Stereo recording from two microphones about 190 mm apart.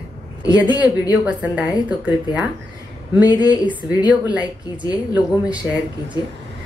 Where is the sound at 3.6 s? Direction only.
5° right (ahead or behind).